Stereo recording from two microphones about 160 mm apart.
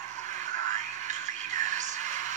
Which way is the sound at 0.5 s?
50° right (ahead or behind).